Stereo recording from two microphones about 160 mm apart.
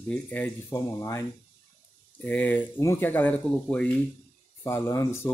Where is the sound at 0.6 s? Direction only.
20° left (ahead or behind).